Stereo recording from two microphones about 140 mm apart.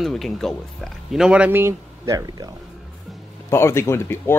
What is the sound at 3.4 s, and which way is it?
Speech, 20° left (ahead or behind).